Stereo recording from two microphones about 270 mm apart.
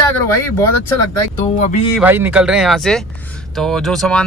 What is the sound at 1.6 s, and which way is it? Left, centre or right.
Speech, left.